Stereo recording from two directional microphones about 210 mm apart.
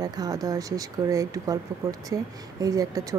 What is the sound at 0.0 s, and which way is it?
Speech, 20° right (ahead or behind).